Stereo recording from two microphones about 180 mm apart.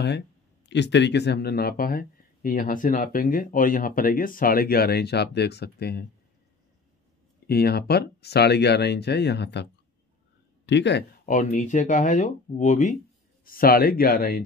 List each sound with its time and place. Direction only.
0.7 s speech: 75° left (ahead or behind)
7.4 s speech: 60° left (ahead or behind)
11.2 s speech: 45° left (ahead or behind)